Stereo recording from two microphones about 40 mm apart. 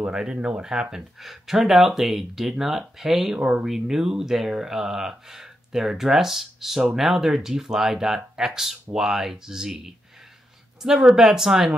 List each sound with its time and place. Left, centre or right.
0.1 s speech: centre
0.4 s speech: right
0.7 s speech: centre
1.2 s speech: centre
3.3 s speech: right
3.6 s speech: centre